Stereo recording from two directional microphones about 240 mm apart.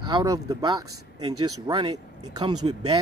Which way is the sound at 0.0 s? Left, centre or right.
Centre.